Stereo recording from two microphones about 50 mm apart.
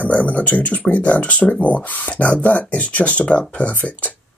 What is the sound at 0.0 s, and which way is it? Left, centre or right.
Speech, left.